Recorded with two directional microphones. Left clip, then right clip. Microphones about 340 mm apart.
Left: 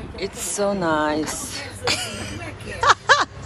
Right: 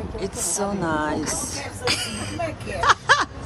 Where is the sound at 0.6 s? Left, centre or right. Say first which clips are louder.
Left 5 dB; centre.